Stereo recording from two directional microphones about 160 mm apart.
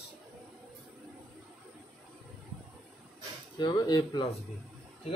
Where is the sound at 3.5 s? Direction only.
25° left (ahead or behind).